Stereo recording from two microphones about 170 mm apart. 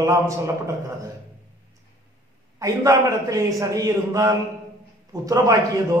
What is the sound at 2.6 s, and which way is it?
A man's voice, 20° right (ahead or behind).